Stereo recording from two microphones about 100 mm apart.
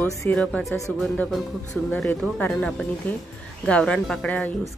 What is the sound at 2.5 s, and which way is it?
A woman's voice, 10° left (ahead or behind).